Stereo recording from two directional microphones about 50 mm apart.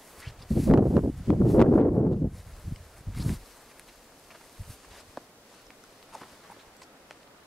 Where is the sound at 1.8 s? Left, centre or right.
Left.